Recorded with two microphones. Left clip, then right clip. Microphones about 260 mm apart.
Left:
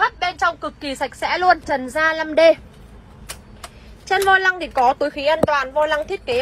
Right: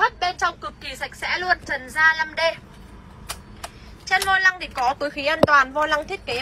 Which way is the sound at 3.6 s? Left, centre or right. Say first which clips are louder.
Left 2 dB; centre.